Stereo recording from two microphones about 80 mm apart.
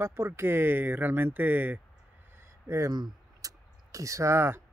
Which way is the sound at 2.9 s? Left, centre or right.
Right.